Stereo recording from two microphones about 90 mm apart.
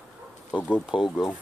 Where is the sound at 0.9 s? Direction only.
5° right (ahead or behind).